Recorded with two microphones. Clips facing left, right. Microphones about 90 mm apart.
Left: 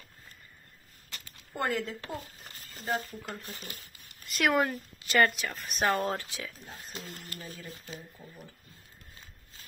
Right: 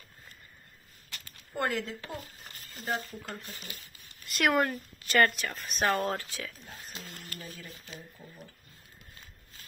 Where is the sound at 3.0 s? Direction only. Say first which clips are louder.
Left 1 dB; 10° left (ahead or behind).